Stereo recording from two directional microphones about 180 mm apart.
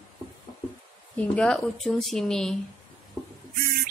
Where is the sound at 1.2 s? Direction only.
5° left (ahead or behind).